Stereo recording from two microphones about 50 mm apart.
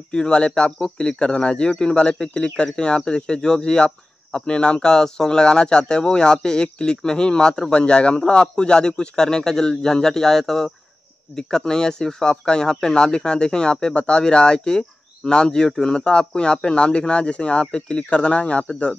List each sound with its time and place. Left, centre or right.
0.1 s speech: centre